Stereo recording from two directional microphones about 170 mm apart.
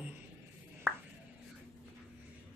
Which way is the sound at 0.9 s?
10° right (ahead or behind).